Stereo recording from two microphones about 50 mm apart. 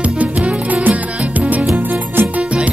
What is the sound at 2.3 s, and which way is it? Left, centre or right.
Music, right.